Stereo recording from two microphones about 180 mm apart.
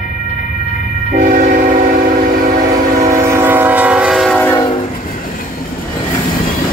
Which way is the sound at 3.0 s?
15° right (ahead or behind).